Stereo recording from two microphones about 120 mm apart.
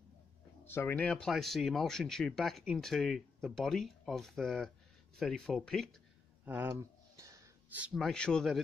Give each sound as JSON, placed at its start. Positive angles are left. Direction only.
{"t": 0.7, "sound": "speech", "side_deg": 20}
{"t": 6.4, "sound": "speech", "side_deg": -15}
{"t": 6.7, "sound": "a sound", "side_deg": -25}
{"t": 7.9, "sound": "speech", "side_deg": 5}